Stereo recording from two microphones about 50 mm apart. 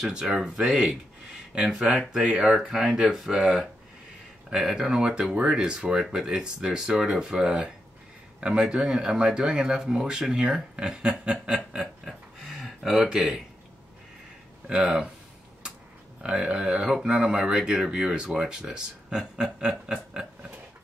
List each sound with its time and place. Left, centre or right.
0.1 s speech: centre
4.5 s speech: centre
14.7 s speech: centre
16.3 s speech: centre